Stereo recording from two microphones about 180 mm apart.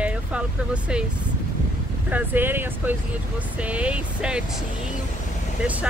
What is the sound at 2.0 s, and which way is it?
Speech, 10° right (ahead or behind).